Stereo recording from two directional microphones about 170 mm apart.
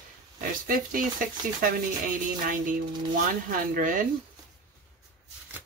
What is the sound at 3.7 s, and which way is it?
Speech, 55° right (ahead or behind).